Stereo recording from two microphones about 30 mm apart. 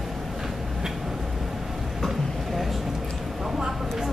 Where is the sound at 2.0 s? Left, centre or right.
Centre.